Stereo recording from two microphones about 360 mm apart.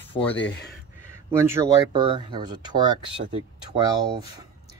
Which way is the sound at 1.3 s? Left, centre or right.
Centre.